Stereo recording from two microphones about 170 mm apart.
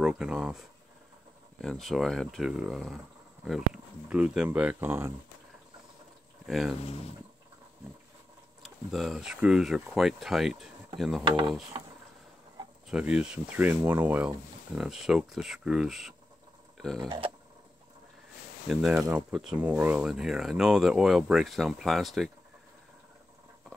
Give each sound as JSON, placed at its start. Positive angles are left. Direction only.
{"t": 0.0, "sound": "speech", "side_deg": -5}
{"t": 6.4, "sound": "speech", "side_deg": 0}
{"t": 8.6, "sound": "speech", "side_deg": 0}
{"t": 11.2, "sound": "speech", "side_deg": -30}
{"t": 12.9, "sound": "speech", "side_deg": -5}
{"t": 18.7, "sound": "speech", "side_deg": 0}